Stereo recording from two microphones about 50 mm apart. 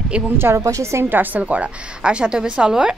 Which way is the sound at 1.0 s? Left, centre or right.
Right.